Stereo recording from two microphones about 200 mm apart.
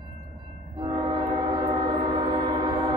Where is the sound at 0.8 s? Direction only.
25° right (ahead or behind).